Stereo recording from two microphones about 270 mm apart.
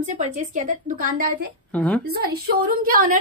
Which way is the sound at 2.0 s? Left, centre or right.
Right.